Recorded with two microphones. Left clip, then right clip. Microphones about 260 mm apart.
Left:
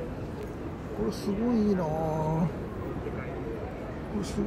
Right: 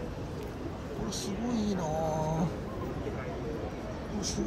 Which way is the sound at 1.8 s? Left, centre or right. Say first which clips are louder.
Left 2 dB; centre.